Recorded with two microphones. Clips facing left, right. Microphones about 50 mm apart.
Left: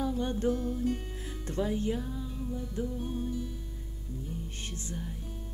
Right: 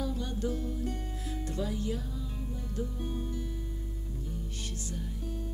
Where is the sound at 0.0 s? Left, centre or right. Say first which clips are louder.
Left 4 dB; left.